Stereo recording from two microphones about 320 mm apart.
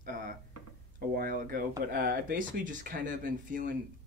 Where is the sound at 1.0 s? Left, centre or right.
Right.